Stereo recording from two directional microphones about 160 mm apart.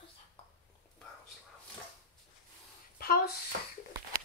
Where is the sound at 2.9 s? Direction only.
70° left (ahead or behind).